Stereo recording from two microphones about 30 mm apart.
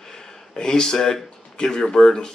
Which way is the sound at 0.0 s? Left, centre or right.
Centre.